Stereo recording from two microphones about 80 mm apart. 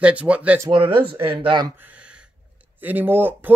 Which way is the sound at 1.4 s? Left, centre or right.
Right.